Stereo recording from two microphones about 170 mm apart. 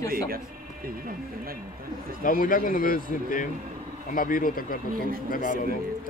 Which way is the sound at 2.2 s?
55° left (ahead or behind).